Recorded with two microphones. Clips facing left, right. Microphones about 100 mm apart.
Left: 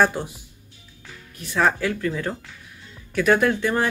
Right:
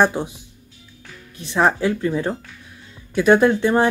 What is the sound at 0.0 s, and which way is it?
Speech, 20° right (ahead or behind).